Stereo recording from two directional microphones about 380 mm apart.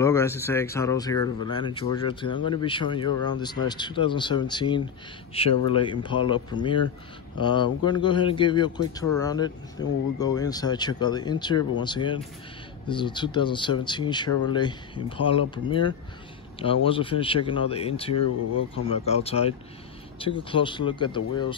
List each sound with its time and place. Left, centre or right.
0.0 s speech: centre